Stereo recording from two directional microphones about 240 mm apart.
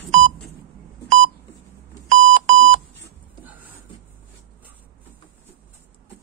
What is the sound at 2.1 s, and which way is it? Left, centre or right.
Alarm clock, right.